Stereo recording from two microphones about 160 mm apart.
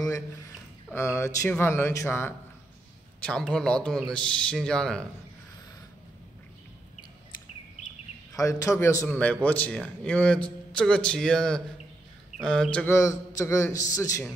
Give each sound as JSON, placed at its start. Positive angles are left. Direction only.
{"t": 0.0, "sound": "a man's voice", "side_deg": 20}
{"t": 8.3, "sound": "a man's voice", "side_deg": 20}
{"t": 12.9, "sound": "a man's voice", "side_deg": 20}